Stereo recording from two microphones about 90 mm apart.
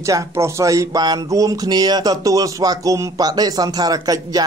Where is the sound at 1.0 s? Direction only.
45° right (ahead or behind).